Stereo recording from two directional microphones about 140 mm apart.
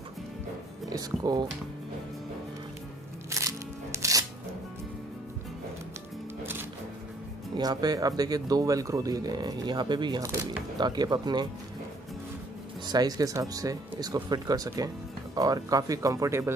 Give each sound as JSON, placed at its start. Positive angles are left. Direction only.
{"t": 0.8, "sound": "speech", "side_deg": -25}
{"t": 3.3, "sound": "music", "side_deg": -20}
{"t": 7.5, "sound": "speech", "side_deg": -30}
{"t": 12.8, "sound": "speech", "side_deg": -30}